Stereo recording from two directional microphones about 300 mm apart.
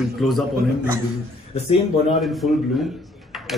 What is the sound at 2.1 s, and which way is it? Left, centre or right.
Speech, centre.